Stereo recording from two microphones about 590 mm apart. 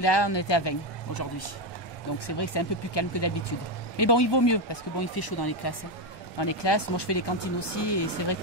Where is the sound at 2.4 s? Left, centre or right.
Left.